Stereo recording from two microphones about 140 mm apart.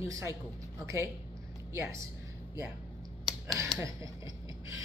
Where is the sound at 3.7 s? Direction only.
25° right (ahead or behind).